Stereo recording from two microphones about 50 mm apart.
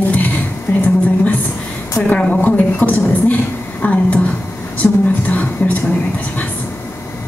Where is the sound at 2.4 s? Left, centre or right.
Left.